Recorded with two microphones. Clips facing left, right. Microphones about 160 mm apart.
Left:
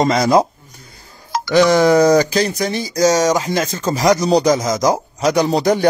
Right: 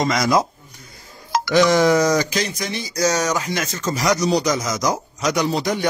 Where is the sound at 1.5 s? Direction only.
35° left (ahead or behind).